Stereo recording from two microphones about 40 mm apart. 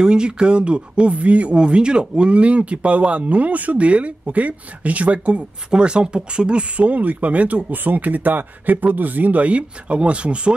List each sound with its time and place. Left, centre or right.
0.0 s speech: right
5.7 s speech: right
6.9 s speech: right
7.7 s speech: right